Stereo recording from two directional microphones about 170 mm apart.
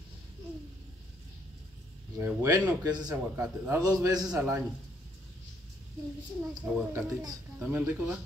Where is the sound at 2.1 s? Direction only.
15° right (ahead or behind).